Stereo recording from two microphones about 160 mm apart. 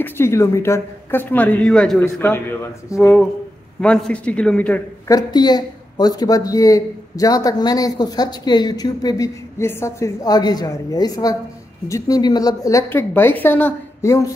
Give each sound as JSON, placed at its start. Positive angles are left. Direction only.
{"t": 0.0, "sound": "speech", "side_deg": 15}
{"t": 5.0, "sound": "speech", "side_deg": 25}